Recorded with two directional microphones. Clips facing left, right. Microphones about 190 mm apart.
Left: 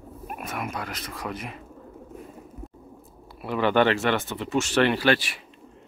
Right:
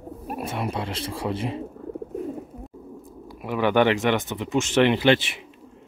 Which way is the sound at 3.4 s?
15° right (ahead or behind).